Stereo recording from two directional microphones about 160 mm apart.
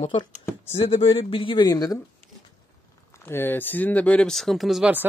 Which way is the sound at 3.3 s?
15° left (ahead or behind).